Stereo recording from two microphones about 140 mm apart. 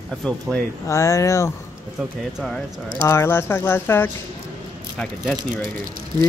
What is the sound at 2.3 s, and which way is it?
Speech, centre (ahead or behind).